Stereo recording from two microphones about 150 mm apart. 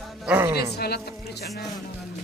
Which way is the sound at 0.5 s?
90° left.